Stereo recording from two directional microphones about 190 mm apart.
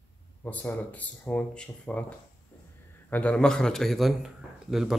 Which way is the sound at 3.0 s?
5° left (ahead or behind).